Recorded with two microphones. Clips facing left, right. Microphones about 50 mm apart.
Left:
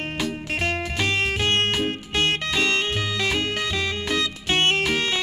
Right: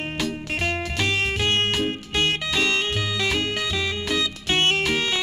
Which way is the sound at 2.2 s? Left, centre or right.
Left.